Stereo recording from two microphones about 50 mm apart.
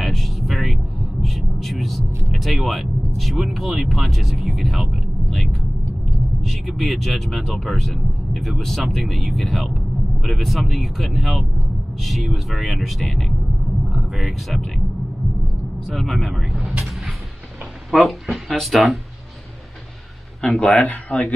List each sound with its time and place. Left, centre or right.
0.0 s vehicle: centre
1.2 s a sound: centre
2.3 s speech: centre
15.9 s speech: centre
17.9 s speech: centre
20.4 s speech: left
20.7 s speech: left